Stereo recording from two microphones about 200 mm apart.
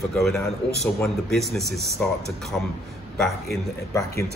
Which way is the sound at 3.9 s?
15° left (ahead or behind).